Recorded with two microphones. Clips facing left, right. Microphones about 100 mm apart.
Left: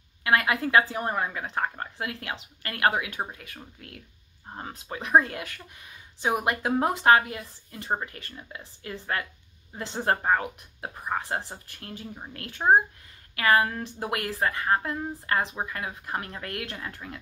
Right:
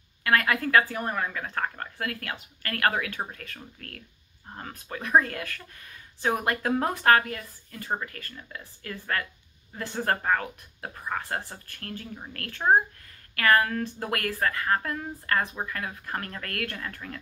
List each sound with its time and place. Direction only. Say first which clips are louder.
0.2 s speech: even; 20° left (ahead or behind)